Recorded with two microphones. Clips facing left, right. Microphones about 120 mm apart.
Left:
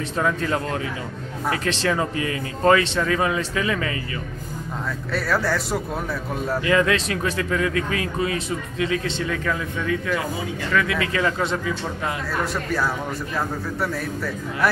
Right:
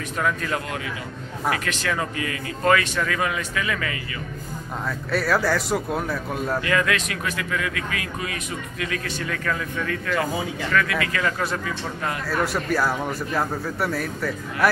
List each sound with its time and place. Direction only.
0.2 s speech: 25° left (ahead or behind)
5.1 s a man's voice: centre (ahead or behind)
6.6 s speech: 25° left (ahead or behind)
12.3 s a man's voice: 5° right (ahead or behind)